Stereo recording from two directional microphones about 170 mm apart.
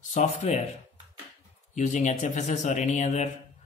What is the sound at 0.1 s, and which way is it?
Speech, 45° left (ahead or behind).